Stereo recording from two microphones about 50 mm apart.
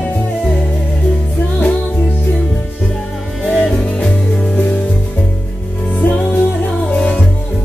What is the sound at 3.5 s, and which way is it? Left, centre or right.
Music, centre.